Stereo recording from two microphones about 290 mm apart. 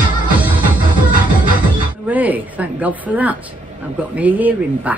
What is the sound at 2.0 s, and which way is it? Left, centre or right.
A woman's voice, centre.